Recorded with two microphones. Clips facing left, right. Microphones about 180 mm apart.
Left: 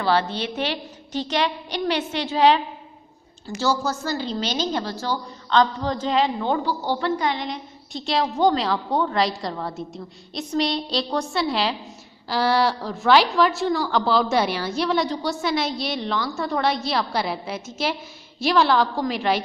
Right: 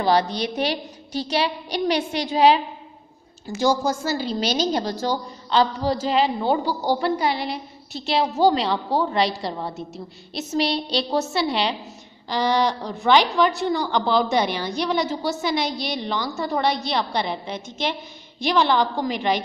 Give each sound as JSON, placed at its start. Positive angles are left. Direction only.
{"t": 0.0, "sound": "a woman's voice", "side_deg": -15}
{"t": 9.5, "sound": "a woman's voice", "side_deg": -20}
{"t": 10.5, "sound": "a woman's voice", "side_deg": 0}